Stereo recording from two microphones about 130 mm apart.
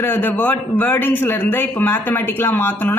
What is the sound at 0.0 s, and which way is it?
A man's voice, 15° left (ahead or behind).